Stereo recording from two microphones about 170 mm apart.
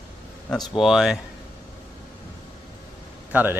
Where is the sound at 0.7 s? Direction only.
Centre (ahead or behind).